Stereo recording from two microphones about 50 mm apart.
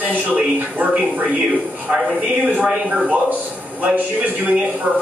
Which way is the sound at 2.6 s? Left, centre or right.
Right.